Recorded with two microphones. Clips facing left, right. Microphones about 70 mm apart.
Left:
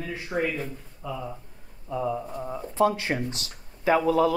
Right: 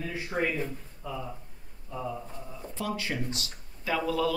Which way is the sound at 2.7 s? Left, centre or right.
Left.